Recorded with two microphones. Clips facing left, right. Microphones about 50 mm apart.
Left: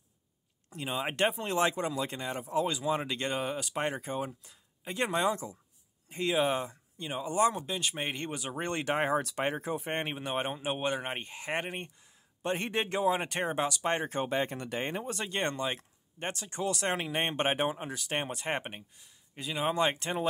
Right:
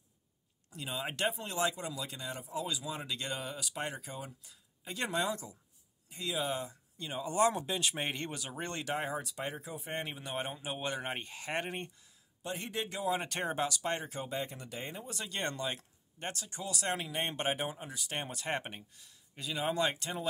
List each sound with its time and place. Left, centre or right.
0.7 s speech: left
7.3 s speech: centre
8.3 s speech: left
12.4 s speech: left
18.2 s speech: left